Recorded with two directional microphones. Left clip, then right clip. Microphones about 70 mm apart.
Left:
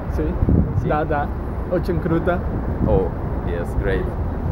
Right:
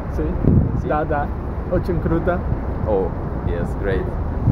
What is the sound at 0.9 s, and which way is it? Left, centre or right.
Speech, centre.